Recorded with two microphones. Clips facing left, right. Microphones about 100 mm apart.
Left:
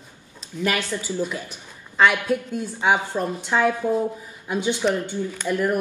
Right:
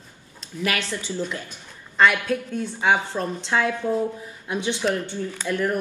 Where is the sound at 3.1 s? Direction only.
15° left (ahead or behind).